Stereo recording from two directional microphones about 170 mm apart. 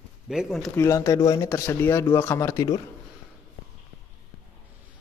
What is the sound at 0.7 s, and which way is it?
Speech, 15° left (ahead or behind).